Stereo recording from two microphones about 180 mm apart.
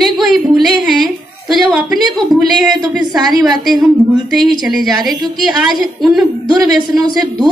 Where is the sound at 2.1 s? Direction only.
Centre (ahead or behind).